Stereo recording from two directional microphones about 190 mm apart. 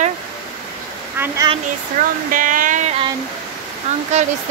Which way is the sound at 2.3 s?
45° right (ahead or behind).